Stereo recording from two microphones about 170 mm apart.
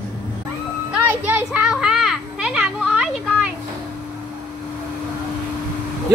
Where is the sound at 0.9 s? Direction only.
10° right (ahead or behind).